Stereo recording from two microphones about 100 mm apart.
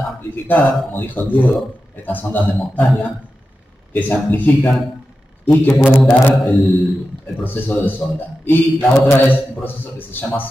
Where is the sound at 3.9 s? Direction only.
15° left (ahead or behind).